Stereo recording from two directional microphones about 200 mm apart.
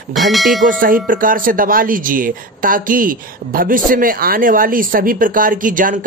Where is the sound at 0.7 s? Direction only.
45° right (ahead or behind).